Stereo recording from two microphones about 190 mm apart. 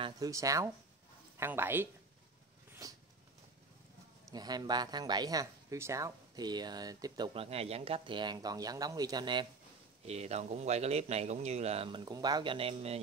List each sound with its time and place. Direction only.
0.0 s speech: 20° right (ahead or behind)
2.8 s a sound: 15° right (ahead or behind)
4.3 s speech: 20° right (ahead or behind)
10.0 s speech: 35° right (ahead or behind)